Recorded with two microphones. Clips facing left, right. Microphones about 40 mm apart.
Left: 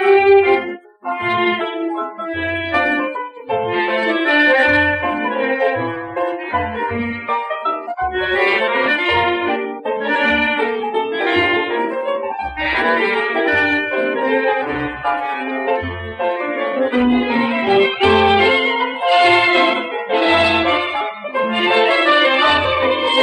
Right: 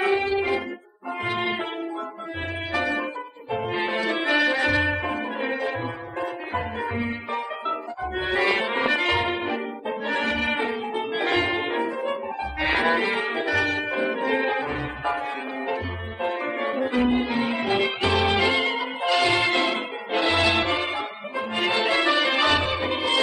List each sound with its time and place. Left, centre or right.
0.0 s music: left
2.7 s music: left
9.2 s music: left
12.6 s music: left
13.9 s music: left
16.2 s music: left
16.7 s brass instrument: left
17.2 s music: left
20.1 s brass instrument: left
21.4 s music: left